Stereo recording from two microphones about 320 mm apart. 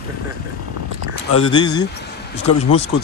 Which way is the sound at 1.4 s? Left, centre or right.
Centre.